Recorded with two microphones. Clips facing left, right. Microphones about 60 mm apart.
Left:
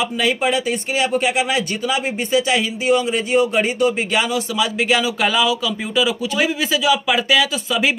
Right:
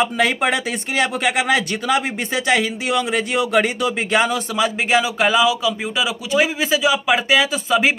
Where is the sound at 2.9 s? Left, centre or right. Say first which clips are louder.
Left 5 dB; right.